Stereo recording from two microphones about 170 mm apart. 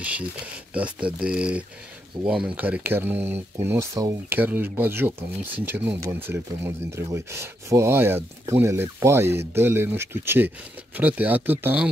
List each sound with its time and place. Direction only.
0.7 s speech: 5° right (ahead or behind)